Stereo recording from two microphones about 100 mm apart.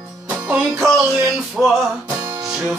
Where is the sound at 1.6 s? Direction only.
5° right (ahead or behind).